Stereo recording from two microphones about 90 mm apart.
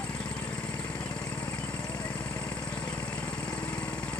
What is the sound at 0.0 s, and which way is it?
Vehicle, 15° left (ahead or behind).